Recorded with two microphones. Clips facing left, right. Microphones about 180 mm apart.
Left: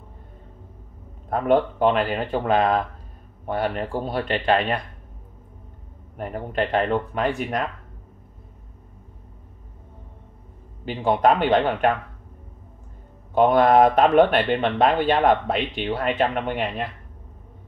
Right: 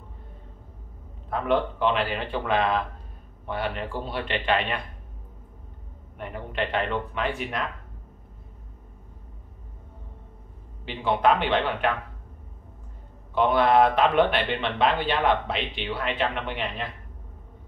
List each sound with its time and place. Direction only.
1.3 s speech: 45° left (ahead or behind)
6.1 s speech: 40° left (ahead or behind)
10.9 s speech: 45° left (ahead or behind)
13.3 s speech: 45° left (ahead or behind)